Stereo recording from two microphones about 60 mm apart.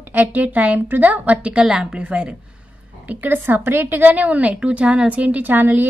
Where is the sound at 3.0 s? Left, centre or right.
Right.